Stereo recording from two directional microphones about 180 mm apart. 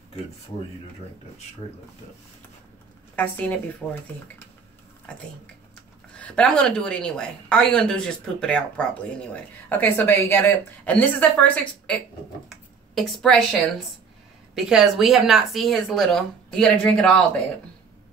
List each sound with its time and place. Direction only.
3.2 s a woman's voice: 10° left (ahead or behind)
6.1 s a woman's voice: 5° left (ahead or behind)